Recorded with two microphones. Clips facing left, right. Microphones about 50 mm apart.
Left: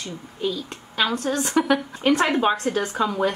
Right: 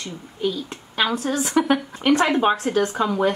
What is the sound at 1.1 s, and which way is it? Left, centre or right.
A woman's voice, centre.